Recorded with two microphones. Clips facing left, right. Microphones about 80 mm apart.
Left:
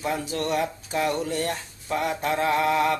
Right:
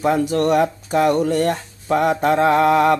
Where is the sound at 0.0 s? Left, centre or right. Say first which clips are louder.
Right 10 dB; right.